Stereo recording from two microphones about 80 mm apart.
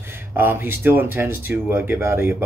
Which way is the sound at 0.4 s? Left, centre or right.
Right.